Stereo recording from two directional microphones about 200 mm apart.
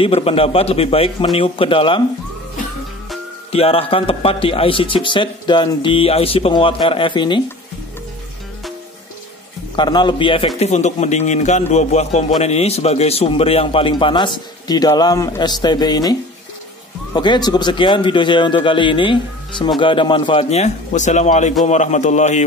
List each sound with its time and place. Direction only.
0.0 s a man's voice: 30° left (ahead or behind)
3.5 s a man's voice: 30° left (ahead or behind)
9.8 s a man's voice: 20° left (ahead or behind)